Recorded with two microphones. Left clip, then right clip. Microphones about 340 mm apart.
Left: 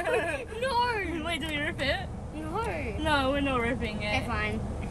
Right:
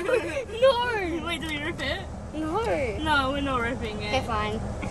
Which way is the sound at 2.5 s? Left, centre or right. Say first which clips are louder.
Right 6 dB; centre.